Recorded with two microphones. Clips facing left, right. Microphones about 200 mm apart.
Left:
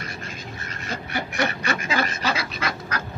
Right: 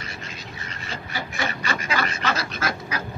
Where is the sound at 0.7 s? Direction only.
55° left (ahead or behind).